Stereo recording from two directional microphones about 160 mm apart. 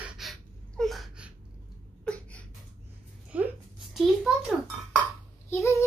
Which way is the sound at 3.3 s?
10° right (ahead or behind).